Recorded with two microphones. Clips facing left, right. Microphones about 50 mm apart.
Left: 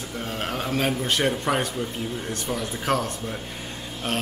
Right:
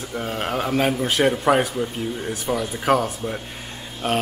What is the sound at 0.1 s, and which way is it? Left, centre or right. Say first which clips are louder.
A man's voice: right 5 dB; centre.